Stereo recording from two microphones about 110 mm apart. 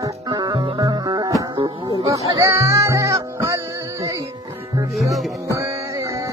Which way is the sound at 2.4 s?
30° right (ahead or behind).